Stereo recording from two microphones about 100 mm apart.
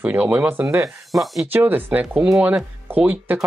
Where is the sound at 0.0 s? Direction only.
15° right (ahead or behind).